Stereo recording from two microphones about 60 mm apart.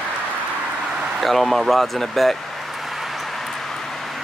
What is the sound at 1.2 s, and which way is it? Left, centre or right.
Vehicle, centre.